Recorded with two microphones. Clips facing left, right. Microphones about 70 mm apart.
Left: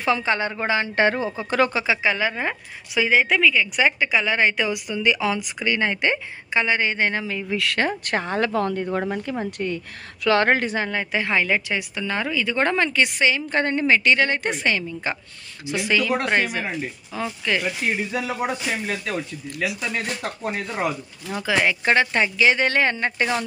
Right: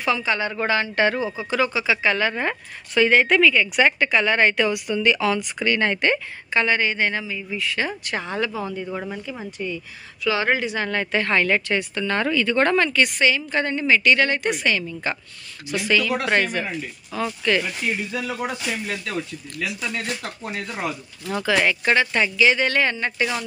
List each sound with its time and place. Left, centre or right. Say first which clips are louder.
0.0 s a woman's voice: left 1 dB; left
1.9 s speech: right 1 dB; centre
6.8 s a woman's voice: even; left
7.2 s speech: left 3 dB; left
8.0 s a woman's voice: left 3 dB; left
8.5 s a woman's voice: left 5 dB; left
10.9 s speech: right 2 dB; centre
13.5 s a woman's voice: left 1 dB; left
16.3 s speech: right 1 dB; centre
17.8 s a woman's voice: left 1 dB; left
19.6 s speech: left 2 dB; centre
21.4 s speech: right 1 dB; centre
21.8 s speech: left 1 dB; left